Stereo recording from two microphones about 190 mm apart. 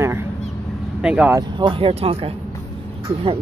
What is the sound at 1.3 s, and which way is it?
Speech, 25° right (ahead or behind).